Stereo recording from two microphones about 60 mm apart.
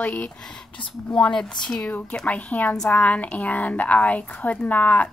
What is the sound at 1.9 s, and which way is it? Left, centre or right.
Speech, left.